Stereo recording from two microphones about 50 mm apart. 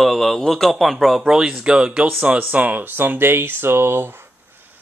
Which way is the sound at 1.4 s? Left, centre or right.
Centre.